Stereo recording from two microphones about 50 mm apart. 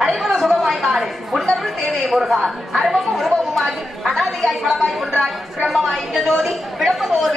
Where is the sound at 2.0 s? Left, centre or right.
Centre.